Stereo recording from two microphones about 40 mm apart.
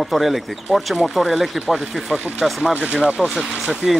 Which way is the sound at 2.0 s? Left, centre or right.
Right.